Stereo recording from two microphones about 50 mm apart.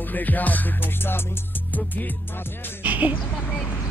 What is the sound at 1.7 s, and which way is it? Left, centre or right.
Music, left.